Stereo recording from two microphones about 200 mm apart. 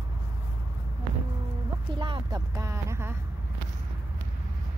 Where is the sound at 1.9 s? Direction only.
25° right (ahead or behind).